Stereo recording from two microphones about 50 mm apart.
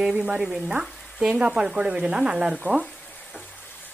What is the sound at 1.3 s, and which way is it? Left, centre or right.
Speech, centre.